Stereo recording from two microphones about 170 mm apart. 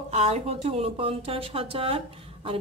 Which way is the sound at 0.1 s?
40° right (ahead or behind).